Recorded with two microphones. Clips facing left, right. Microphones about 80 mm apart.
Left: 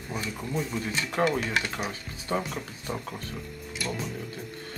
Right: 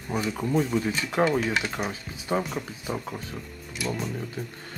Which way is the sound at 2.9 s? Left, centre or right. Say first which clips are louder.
Right 1 dB; centre.